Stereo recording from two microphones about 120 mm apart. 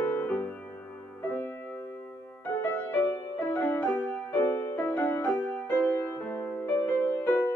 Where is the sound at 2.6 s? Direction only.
15° left (ahead or behind).